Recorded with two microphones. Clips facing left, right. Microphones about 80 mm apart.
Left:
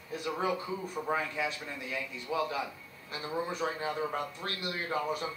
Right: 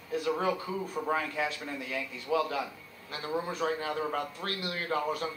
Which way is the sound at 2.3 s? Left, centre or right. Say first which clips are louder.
Right 3 dB; right.